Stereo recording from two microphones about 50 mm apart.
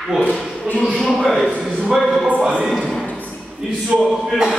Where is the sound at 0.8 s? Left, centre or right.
Centre.